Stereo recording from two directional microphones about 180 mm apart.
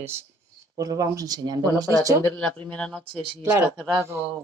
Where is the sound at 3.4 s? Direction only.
15° right (ahead or behind).